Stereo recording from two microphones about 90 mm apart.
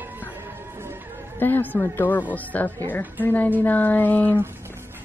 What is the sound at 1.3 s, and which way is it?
A woman's voice, 20° left (ahead or behind).